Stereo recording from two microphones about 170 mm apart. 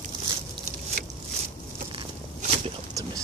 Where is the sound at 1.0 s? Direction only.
55° right (ahead or behind).